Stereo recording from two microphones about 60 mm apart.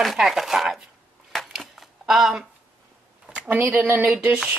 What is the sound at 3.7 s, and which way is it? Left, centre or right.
Speech, right.